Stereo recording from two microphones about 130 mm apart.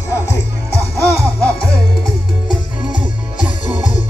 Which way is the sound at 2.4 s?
10° right (ahead or behind).